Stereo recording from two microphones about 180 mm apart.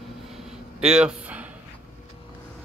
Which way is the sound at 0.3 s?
5° right (ahead or behind).